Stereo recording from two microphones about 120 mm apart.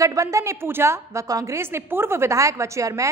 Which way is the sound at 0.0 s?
25° right (ahead or behind).